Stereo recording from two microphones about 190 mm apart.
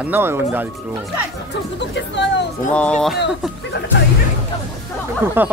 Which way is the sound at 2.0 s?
70° left (ahead or behind).